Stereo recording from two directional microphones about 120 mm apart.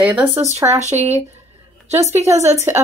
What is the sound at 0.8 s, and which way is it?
Speech, 70° right (ahead or behind).